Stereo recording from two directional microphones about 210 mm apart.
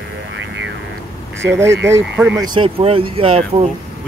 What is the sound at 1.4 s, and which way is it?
Speech, 10° right (ahead or behind).